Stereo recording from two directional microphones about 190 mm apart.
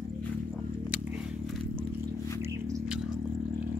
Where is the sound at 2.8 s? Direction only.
5° right (ahead or behind).